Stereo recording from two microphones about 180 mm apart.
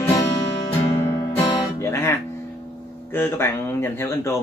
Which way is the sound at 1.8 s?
15° left (ahead or behind).